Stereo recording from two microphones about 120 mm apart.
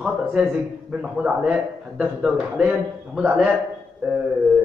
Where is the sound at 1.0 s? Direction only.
10° right (ahead or behind).